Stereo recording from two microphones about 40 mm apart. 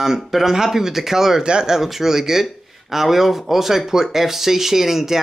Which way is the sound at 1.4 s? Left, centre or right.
Right.